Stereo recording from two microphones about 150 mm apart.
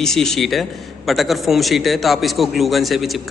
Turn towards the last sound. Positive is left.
turn(degrees=0)  # may be behind; listen again after turning